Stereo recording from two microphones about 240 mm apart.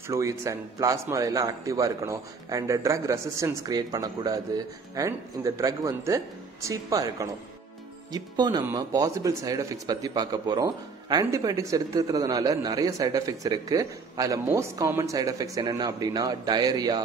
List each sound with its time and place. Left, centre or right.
0.1 s speech: centre